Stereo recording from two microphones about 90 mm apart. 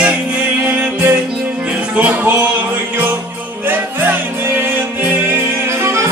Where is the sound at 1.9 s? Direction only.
20° right (ahead or behind).